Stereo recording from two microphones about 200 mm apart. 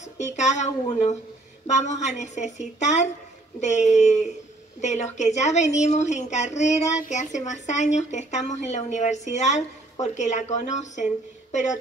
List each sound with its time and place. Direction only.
0.0 s a woman's voice: 35° left (ahead or behind)